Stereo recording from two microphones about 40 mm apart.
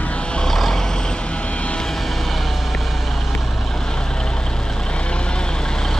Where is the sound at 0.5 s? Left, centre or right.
Centre.